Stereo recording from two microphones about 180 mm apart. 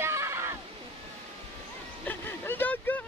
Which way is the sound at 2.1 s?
10° left (ahead or behind).